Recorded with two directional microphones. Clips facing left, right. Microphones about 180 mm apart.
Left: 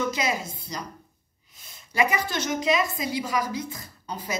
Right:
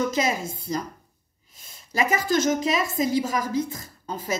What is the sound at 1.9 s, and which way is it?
A woman's voice, 40° right (ahead or behind).